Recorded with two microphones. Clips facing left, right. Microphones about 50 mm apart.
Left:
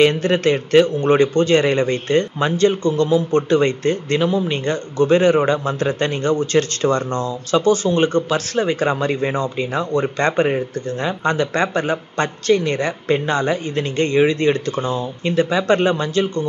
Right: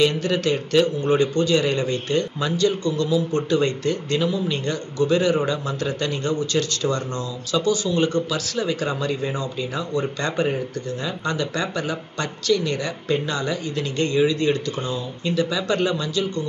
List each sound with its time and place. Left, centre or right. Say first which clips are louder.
0.0 s speech: left 5 dB; left